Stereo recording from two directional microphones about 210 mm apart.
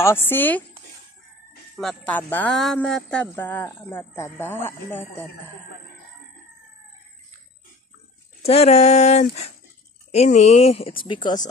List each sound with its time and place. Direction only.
0.0 s speech: 10° left (ahead or behind)
1.8 s speech: 5° left (ahead or behind)
8.4 s speech: 30° left (ahead or behind)